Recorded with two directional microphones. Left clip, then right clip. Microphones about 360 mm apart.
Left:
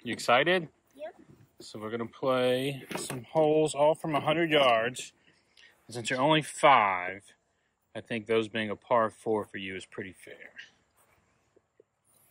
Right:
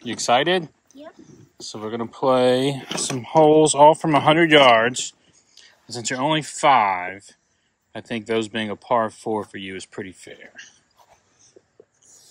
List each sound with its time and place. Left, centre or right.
0.0 s speech: centre